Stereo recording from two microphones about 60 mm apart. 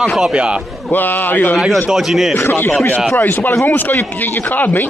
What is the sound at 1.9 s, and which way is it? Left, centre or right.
Speech, centre.